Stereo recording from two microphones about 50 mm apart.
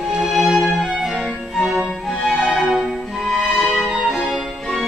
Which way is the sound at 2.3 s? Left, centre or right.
Left.